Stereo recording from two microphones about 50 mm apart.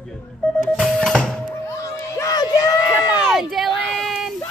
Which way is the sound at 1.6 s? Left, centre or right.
Left.